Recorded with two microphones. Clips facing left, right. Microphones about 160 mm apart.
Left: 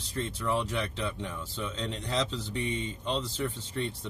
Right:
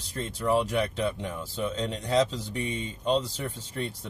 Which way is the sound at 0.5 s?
15° right (ahead or behind).